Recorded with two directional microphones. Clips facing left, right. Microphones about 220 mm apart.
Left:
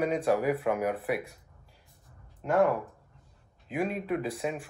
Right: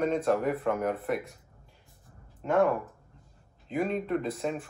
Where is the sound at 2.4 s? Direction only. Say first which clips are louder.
Even; centre (ahead or behind).